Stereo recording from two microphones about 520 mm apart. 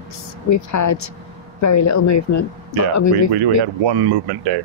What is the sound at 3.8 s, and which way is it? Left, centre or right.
Speech, right.